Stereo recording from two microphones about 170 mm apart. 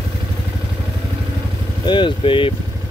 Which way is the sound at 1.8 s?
25° left (ahead or behind).